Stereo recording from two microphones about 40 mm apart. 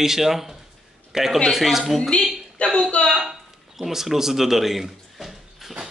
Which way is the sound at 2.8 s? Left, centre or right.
Left.